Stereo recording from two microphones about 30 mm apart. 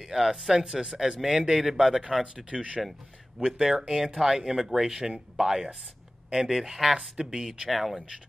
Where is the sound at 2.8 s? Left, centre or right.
Centre.